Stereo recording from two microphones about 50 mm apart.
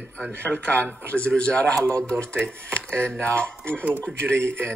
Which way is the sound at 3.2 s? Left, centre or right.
Left.